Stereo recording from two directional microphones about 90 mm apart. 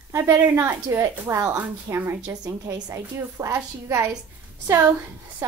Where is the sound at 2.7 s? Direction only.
45° right (ahead or behind).